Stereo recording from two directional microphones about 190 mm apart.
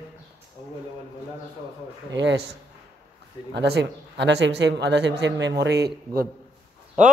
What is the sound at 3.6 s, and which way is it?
Speech, 65° right (ahead or behind).